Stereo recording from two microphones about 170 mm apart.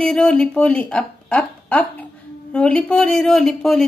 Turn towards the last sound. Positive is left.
turn(degrees=0)  # may be behind; listen again after turning